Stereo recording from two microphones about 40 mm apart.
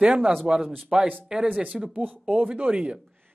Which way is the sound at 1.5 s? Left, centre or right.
Right.